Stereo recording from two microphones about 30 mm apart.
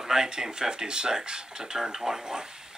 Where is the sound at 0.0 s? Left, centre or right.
Centre.